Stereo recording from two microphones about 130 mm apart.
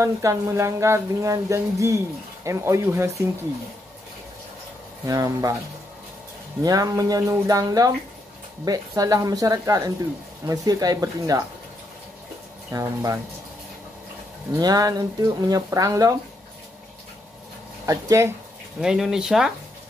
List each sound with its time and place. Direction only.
0.0 s speech: 25° right (ahead or behind)
5.0 s speech: 25° right (ahead or behind)
6.6 s speech: 25° right (ahead or behind)
12.7 s speech: 25° right (ahead or behind)
14.5 s speech: 30° right (ahead or behind)
17.8 s speech: 25° right (ahead or behind)
18.8 s speech: 5° right (ahead or behind)